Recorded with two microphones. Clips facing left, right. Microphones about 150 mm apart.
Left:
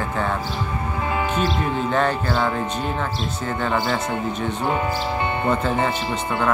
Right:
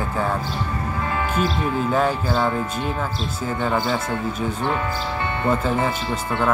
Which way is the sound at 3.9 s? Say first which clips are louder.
Even; 20° left (ahead or behind).